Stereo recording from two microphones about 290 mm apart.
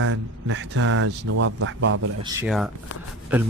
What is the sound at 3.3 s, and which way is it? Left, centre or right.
Speech, centre.